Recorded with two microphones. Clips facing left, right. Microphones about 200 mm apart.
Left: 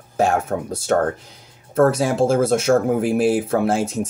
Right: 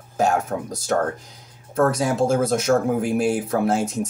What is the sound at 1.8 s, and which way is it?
Speech, 30° left (ahead or behind).